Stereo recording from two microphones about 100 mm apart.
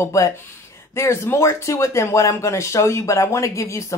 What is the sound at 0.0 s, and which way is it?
Speech, 30° left (ahead or behind).